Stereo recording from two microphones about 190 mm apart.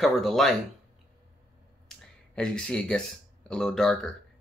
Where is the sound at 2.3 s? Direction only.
5° left (ahead or behind).